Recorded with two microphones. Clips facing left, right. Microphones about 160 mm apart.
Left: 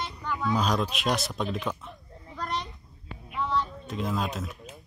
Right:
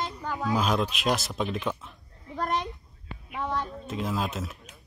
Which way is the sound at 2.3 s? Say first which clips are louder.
Right 4 dB; 45° right (ahead or behind).